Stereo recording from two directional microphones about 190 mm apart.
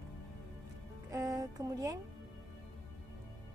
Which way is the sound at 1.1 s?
15° right (ahead or behind).